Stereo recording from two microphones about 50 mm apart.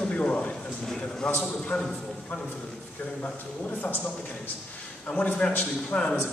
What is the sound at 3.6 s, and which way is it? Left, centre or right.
Speech, left.